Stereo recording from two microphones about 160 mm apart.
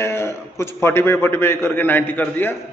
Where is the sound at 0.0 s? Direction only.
15° left (ahead or behind).